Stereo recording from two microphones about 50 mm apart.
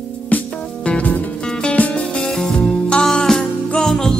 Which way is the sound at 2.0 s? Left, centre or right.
Centre.